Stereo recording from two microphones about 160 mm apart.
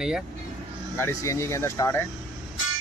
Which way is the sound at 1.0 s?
20° left (ahead or behind).